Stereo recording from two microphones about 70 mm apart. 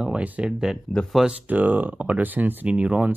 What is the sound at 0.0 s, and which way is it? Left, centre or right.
Speech, centre.